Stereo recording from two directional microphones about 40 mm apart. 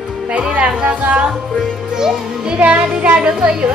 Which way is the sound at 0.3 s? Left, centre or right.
Right.